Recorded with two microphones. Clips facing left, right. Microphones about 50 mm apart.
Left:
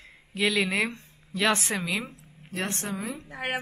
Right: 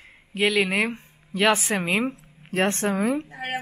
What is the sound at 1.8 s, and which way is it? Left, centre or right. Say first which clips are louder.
A woman's voice: right 7 dB; right.